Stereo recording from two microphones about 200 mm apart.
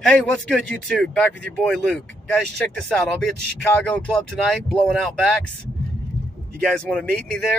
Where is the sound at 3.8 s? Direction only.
5° left (ahead or behind).